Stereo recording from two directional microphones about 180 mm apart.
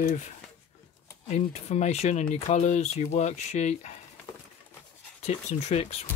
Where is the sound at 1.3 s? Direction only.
35° left (ahead or behind).